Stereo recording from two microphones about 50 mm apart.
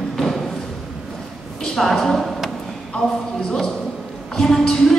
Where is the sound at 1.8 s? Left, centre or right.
Centre.